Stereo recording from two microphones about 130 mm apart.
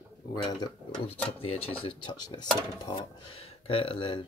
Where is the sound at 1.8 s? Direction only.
35° left (ahead or behind).